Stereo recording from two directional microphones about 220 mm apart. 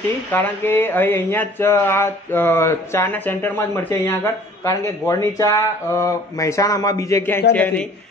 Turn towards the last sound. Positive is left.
turn(degrees=5)  # may be behind; listen again after turning